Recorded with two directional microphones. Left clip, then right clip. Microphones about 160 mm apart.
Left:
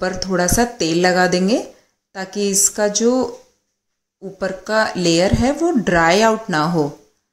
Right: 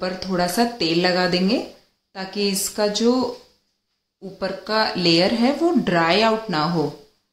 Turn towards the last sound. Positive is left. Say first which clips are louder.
# left 4 dB
turn(degrees=40)  # may be behind; listen again after turning